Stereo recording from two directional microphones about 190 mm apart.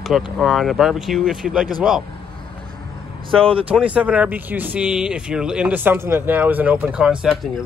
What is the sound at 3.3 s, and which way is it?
Speech, 30° right (ahead or behind).